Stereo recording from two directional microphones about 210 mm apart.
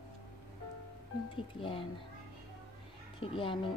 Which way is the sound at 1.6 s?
25° left (ahead or behind).